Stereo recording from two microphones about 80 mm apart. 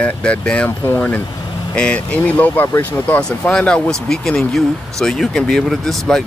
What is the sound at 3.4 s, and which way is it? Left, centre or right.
Speech, centre.